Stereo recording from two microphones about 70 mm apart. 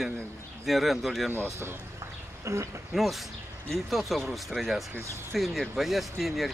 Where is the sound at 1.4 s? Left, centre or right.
Right.